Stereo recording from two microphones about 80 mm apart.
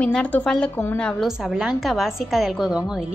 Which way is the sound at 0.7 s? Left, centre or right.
Left.